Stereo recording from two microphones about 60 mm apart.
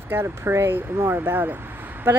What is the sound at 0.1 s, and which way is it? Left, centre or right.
Speech, right.